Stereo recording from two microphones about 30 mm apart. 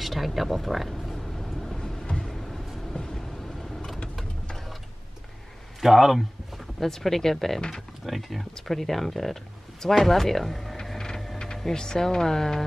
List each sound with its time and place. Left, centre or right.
0.0 s vehicle: centre
1.8 s a sound: centre
2.2 s a sound: centre
2.9 s vehicle: left
5.8 s speech: centre
6.8 s speech: centre
8.0 s speech: centre
11.7 s speech: left